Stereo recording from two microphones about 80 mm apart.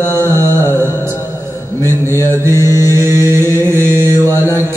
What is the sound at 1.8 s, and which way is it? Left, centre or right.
Speech, left.